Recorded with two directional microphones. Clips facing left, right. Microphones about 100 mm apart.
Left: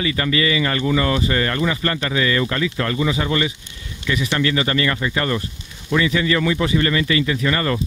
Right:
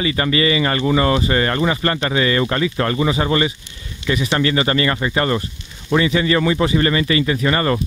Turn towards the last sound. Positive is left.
turn(degrees=-30)  # may be behind; listen again after turning